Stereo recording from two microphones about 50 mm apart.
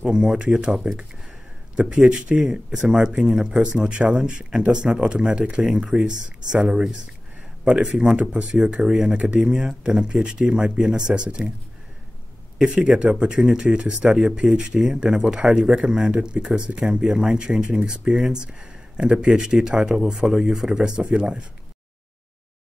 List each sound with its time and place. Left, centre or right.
0.0 s speech: centre
2.0 s speech: centre
9.1 s speech: right
9.5 s speech: centre
12.6 s speech: centre